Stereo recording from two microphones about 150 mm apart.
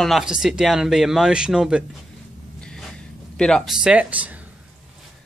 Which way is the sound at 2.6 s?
5° left (ahead or behind).